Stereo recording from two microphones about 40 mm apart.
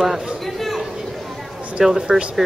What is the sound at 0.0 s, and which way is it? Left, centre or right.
Speech, centre.